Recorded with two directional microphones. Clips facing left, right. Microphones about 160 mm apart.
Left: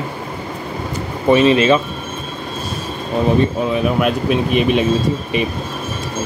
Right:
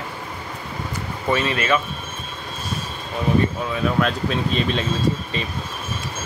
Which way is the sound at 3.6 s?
15° left (ahead or behind).